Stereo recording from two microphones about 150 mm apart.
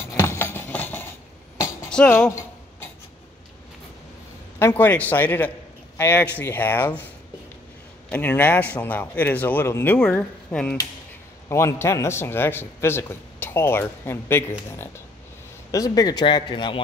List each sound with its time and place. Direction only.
0.1 s a sound: 15° left (ahead or behind)
1.9 s speech: 5° left (ahead or behind)
4.6 s a man's voice: 15° left (ahead or behind)
8.1 s a man's voice: 15° left (ahead or behind)
11.4 s a man's voice: 20° left (ahead or behind)
15.7 s speech: 25° left (ahead or behind)